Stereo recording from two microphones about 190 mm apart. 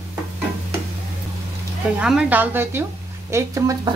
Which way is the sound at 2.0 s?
5° right (ahead or behind).